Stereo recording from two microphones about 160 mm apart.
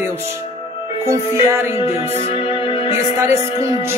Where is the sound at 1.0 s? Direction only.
15° right (ahead or behind).